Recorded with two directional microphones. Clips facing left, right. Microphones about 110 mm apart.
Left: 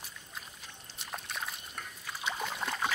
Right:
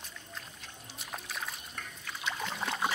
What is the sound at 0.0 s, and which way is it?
Music, 5° left (ahead or behind).